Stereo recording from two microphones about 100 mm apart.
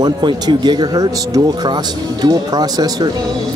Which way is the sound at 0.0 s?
50° right (ahead or behind).